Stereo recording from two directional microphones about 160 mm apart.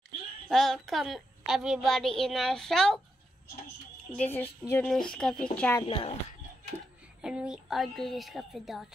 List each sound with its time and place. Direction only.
0.5 s a woman's voice: centre (ahead or behind)
4.1 s a woman's voice: 10° left (ahead or behind)
5.8 s speech: 35° left (ahead or behind)
7.2 s a woman's voice: 5° right (ahead or behind)